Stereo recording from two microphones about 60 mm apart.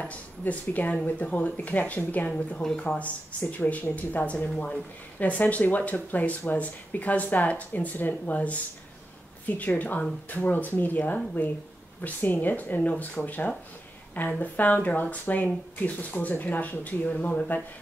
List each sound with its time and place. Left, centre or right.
0.0 s speech: left